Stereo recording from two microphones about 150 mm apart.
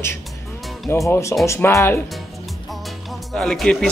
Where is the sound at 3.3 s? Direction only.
5° left (ahead or behind).